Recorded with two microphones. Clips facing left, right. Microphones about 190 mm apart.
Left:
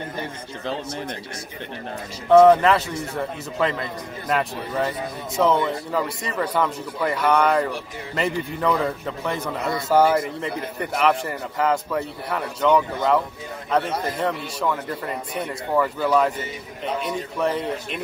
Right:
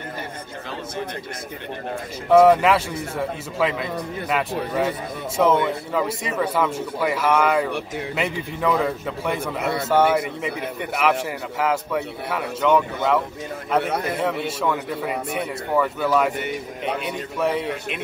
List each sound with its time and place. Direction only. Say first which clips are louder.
2.2 s a man's voice: left 1 dB; 5° right (ahead or behind)
13.8 s a man's voice: right 2 dB; 65° right (ahead or behind)
14.1 s a man's voice: right 2 dB; 5° right (ahead or behind)
17.4 s a man's voice: right 1 dB; 5° right (ahead or behind)